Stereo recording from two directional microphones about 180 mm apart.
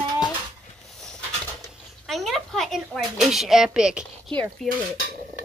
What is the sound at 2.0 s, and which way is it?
Speech, centre (ahead or behind).